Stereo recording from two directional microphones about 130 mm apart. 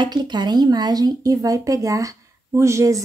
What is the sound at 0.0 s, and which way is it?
A woman's voice, 35° right (ahead or behind).